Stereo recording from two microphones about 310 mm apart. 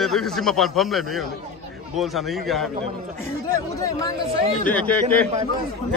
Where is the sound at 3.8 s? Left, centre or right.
Centre.